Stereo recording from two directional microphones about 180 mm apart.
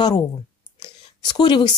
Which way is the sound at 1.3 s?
25° left (ahead or behind).